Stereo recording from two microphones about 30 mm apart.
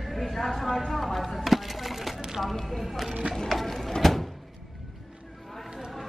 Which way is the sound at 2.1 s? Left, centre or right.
Centre.